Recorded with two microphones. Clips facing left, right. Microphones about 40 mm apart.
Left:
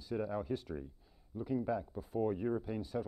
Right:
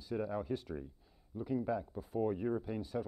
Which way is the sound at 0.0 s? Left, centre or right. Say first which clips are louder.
Even; centre.